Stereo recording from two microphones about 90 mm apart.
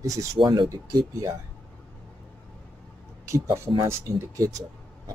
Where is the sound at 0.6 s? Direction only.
40° right (ahead or behind).